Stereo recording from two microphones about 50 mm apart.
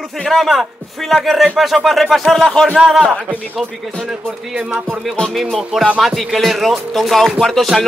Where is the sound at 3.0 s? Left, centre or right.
Centre.